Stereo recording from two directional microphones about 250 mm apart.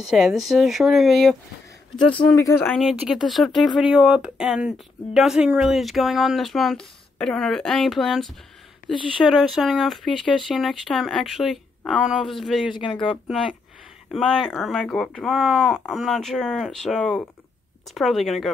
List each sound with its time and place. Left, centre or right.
0.0 s speech: centre
2.1 s speech: centre
12.9 s speech: centre
14.1 s speech: centre